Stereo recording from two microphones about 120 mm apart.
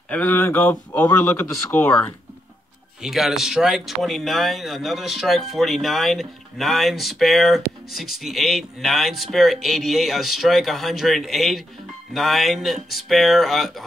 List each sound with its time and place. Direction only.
0.1 s speech: 15° left (ahead or behind)
3.0 s speech: 5° right (ahead or behind)